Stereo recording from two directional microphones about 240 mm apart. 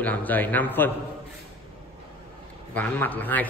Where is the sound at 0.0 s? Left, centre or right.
Centre.